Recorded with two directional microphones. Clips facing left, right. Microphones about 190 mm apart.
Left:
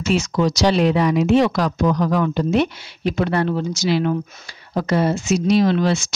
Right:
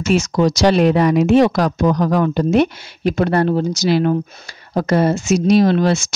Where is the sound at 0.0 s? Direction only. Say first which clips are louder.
Right 3 dB; 45° right (ahead or behind).